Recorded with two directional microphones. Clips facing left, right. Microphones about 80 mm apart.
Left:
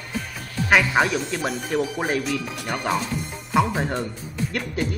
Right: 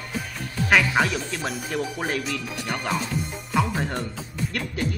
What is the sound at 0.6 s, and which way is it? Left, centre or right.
A man's voice, centre.